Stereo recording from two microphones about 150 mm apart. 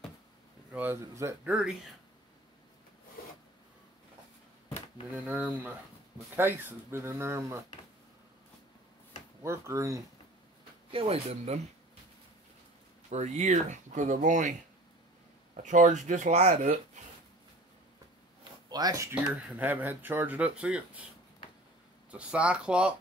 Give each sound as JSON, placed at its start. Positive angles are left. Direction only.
{"t": 0.7, "sound": "speech", "side_deg": -15}
{"t": 1.5, "sound": "speech", "side_deg": -5}
{"t": 5.1, "sound": "speech", "side_deg": -10}
{"t": 9.4, "sound": "speech", "side_deg": -20}
{"t": 10.9, "sound": "speech", "side_deg": -40}
{"t": 13.1, "sound": "speech", "side_deg": -50}
{"t": 15.5, "sound": "speech", "side_deg": -55}
{"t": 18.7, "sound": "speech", "side_deg": -25}
{"t": 19.3, "sound": "speech", "side_deg": -10}
{"t": 22.1, "sound": "speech", "side_deg": -10}